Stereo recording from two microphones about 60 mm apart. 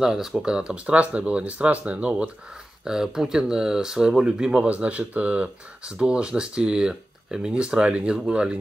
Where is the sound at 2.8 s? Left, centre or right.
Centre.